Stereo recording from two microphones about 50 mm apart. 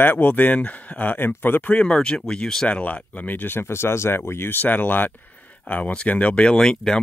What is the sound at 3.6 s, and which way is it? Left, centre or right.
Speech, left.